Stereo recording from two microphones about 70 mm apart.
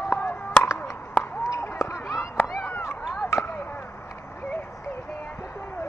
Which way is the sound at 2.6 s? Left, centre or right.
Left.